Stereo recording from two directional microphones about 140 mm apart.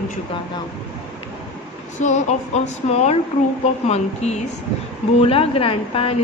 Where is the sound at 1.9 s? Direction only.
55° left (ahead or behind).